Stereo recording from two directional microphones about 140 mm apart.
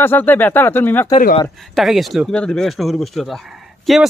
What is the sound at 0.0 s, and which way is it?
Speech, 15° left (ahead or behind).